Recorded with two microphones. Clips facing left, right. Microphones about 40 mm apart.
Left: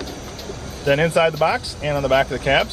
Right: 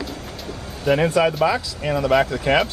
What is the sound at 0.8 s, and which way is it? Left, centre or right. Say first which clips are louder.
Speech: left 1 dB; centre.